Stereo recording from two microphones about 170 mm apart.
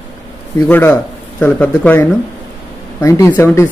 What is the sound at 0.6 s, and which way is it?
Speech, 10° left (ahead or behind).